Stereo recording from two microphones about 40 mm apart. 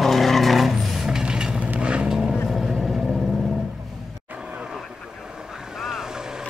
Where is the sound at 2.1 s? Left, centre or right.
Centre.